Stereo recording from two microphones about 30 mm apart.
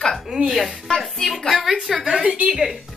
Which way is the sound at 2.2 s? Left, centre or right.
Right.